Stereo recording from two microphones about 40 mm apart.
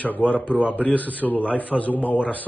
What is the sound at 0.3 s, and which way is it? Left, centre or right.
Speech, left.